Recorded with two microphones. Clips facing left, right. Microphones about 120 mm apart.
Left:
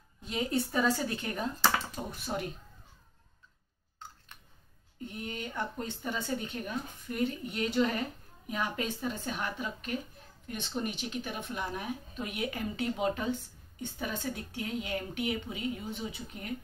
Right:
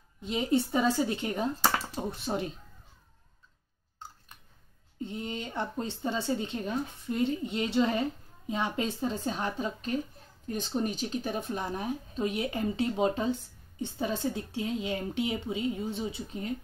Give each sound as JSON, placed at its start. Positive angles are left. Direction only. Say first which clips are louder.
{"t": 0.2, "sound": "speech", "louder": "right 4 dB", "side_deg": -20}
{"t": 5.0, "sound": "a woman's voice", "louder": "right 3 dB", "side_deg": -25}